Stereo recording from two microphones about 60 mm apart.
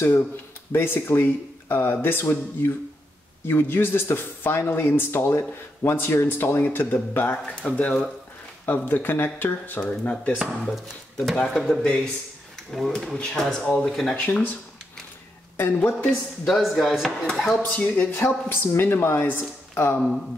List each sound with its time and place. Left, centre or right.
0.7 s speech: left
7.7 s speech: centre
8.6 s speech: left
9.8 s speech: centre
10.6 s speech: centre
11.8 s speech: centre
12.7 s speech: centre
14.2 s speech: left
15.5 s speech: left
16.4 s speech: centre
17.3 s speech: centre
17.6 s speech: left
18.5 s speech: left